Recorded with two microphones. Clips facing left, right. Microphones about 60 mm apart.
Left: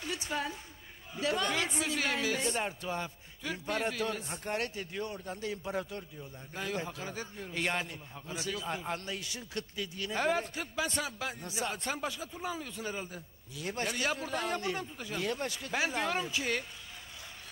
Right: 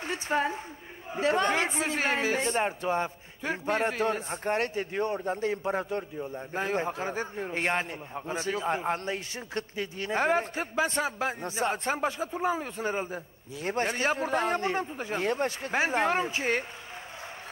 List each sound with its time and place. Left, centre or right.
0.0 s a woman's voice: right